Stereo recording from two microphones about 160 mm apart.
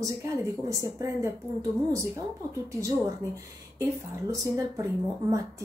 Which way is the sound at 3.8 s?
20° right (ahead or behind).